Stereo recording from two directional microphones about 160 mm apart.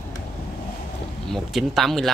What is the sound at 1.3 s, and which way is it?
Speech, centre (ahead or behind).